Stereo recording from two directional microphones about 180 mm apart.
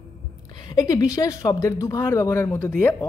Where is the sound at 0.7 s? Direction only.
20° left (ahead or behind).